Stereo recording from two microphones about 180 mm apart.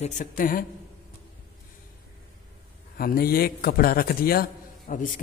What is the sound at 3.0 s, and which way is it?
A man's voice, 55° left (ahead or behind).